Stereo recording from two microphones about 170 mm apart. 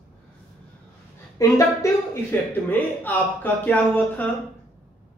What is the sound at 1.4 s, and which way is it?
A woman's voice, 20° left (ahead or behind).